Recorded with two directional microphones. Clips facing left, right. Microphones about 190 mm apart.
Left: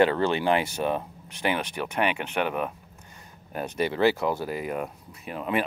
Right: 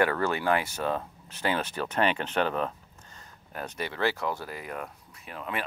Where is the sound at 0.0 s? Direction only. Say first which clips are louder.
Left 4 dB; 25° left (ahead or behind).